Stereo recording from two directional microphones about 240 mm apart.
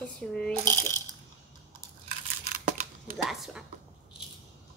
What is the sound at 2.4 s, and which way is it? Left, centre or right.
Tearing, right.